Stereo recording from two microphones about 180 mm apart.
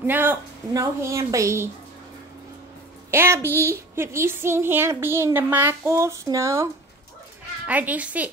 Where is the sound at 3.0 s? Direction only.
15° right (ahead or behind).